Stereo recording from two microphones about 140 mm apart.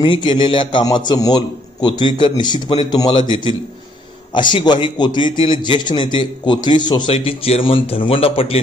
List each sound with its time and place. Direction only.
0.0 s a man's voice: 35° left (ahead or behind)
7.1 s a man's voice: 45° left (ahead or behind)